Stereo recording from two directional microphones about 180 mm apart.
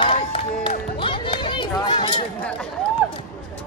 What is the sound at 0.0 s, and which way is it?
Run, 30° left (ahead or behind).